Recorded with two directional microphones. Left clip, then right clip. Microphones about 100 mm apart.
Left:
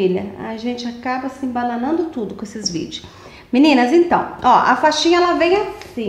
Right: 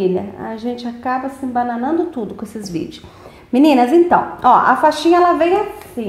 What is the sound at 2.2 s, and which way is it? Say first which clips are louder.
A woman's voice: right 1 dB; 45° right (ahead or behind).